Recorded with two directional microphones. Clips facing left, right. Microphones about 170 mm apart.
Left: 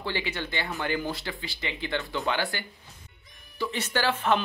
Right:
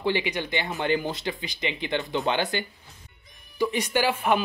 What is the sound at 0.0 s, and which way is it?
Speech, 15° right (ahead or behind).